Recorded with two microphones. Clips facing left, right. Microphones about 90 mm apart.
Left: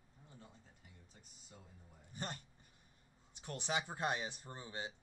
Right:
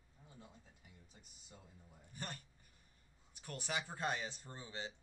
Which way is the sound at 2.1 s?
20° left (ahead or behind).